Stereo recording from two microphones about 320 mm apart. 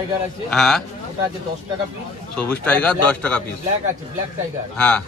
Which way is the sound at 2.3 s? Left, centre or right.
Centre.